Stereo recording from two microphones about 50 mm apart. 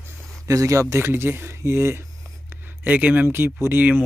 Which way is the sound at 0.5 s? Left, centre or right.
Right.